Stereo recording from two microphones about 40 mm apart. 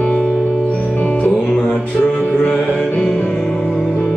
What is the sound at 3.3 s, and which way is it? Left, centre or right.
Music, centre.